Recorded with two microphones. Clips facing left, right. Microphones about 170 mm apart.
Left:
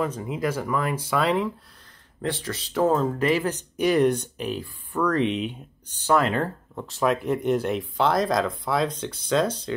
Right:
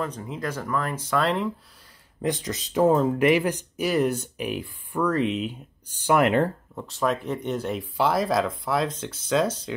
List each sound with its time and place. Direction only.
0.0 s speech: 10° left (ahead or behind)
2.2 s speech: 15° right (ahead or behind)
6.0 s speech: 20° right (ahead or behind)
6.7 s speech: centre (ahead or behind)